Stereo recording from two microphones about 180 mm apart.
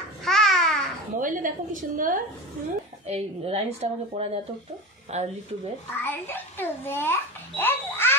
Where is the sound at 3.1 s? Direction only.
35° right (ahead or behind).